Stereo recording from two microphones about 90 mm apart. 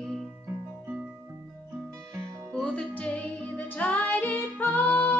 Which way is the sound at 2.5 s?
10° left (ahead or behind).